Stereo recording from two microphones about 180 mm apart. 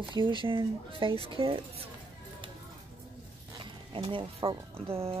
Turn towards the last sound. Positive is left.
turn(degrees=-30)  # may be behind; listen again after turning